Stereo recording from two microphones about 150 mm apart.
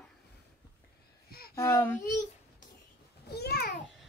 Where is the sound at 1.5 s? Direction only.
20° left (ahead or behind).